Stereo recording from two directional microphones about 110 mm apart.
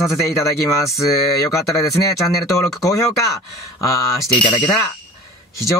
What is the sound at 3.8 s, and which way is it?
Speech, 30° left (ahead or behind).